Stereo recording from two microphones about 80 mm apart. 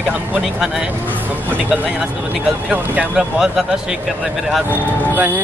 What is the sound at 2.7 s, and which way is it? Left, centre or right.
Speech, centre.